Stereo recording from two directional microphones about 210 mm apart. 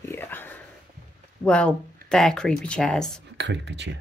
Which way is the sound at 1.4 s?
5° left (ahead or behind).